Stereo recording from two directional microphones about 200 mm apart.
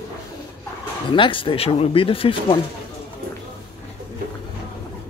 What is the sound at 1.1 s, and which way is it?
Speech, 25° left (ahead or behind).